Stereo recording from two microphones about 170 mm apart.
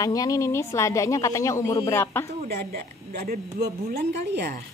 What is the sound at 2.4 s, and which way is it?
A woman's voice, 65° right (ahead or behind).